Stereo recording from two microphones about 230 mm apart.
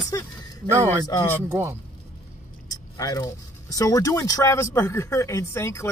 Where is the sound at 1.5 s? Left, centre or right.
Centre.